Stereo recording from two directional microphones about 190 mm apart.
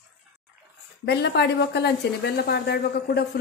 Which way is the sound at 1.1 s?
60° left (ahead or behind).